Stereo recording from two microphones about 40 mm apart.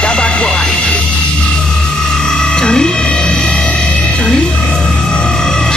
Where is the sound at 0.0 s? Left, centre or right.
Left.